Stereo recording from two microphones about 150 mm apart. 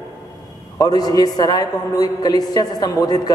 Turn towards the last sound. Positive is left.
turn(degrees=25)  # may be behind; listen again after turning